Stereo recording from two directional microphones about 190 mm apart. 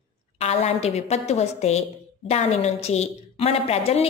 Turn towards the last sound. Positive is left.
turn(degrees=35)  # may be behind; listen again after turning